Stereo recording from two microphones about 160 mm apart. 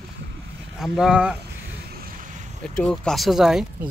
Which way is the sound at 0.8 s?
5° right (ahead or behind).